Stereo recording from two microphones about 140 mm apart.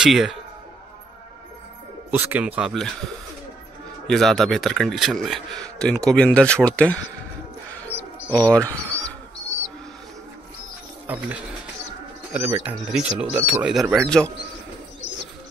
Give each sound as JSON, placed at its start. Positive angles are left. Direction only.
{"t": 0.0, "sound": "speech", "side_deg": -5}
{"t": 2.0, "sound": "speech", "side_deg": -10}
{"t": 4.1, "sound": "speech", "side_deg": 0}
{"t": 8.3, "sound": "speech", "side_deg": 10}
{"t": 11.1, "sound": "speech", "side_deg": -10}
{"t": 12.4, "sound": "speech", "side_deg": -15}